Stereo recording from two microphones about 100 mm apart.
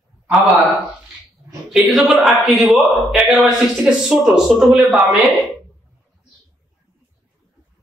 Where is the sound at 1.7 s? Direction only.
5° right (ahead or behind).